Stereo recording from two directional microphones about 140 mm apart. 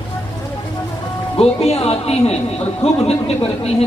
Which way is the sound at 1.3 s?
45° left (ahead or behind).